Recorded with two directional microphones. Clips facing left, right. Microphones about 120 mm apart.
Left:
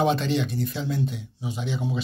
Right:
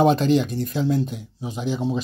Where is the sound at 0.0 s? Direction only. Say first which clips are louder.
Right 5 dB; 40° right (ahead or behind).